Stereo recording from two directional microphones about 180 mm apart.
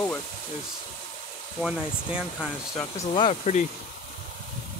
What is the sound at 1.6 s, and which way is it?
Speech, 5° right (ahead or behind).